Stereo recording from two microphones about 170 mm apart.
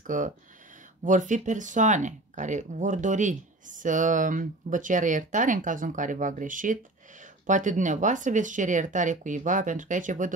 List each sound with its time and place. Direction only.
0.0 s speech: 50° right (ahead or behind)